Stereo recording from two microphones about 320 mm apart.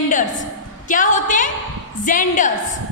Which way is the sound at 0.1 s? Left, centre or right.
Left.